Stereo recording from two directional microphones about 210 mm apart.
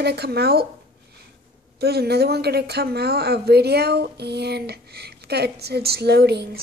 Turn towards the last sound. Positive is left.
turn(degrees=-50)  # may be behind; listen again after turning